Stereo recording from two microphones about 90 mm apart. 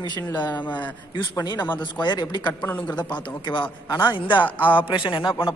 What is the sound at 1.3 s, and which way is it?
Speech, 50° left (ahead or behind).